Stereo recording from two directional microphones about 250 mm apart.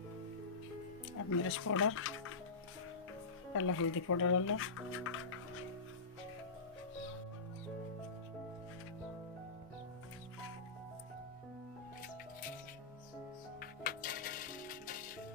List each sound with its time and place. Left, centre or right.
1.3 s speech: left
3.5 s speech: left
13.6 s coin: left